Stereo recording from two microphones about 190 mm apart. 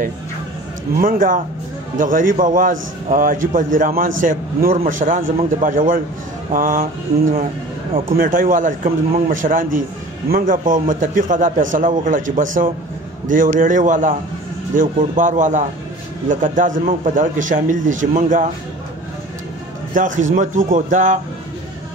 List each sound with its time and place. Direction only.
0.9 s a man's voice: 45° right (ahead or behind)
19.9 s a man's voice: 45° right (ahead or behind)